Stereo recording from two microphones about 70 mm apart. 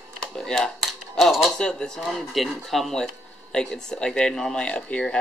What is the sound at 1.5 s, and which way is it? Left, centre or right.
Speech, centre.